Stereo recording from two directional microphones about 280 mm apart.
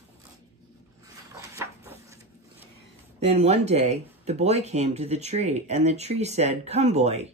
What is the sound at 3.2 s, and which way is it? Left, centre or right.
Speech, right.